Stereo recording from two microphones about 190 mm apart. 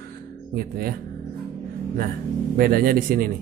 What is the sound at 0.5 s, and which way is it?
Speech, 55° right (ahead or behind).